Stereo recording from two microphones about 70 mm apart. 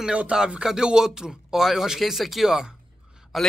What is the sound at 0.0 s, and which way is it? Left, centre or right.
Speech, centre.